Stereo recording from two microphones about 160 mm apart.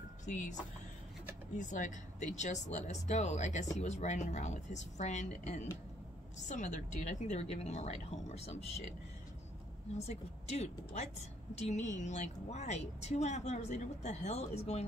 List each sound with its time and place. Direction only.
0.2 s speech: 50° left (ahead or behind)
1.6 s a woman's voice: 50° left (ahead or behind)
9.9 s a woman's voice: 45° left (ahead or behind)